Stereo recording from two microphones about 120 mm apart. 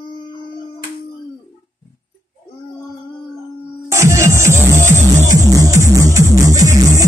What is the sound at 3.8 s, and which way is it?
Music, 25° right (ahead or behind).